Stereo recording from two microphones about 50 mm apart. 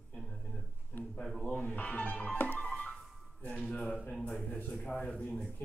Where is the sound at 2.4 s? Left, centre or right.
Left.